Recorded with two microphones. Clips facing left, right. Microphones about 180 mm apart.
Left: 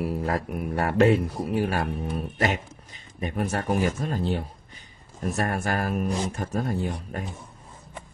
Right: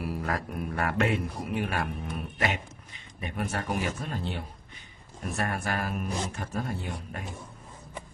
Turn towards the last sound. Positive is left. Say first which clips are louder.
# left 6 dB
turn(degrees=40)  # may be behind; listen again after turning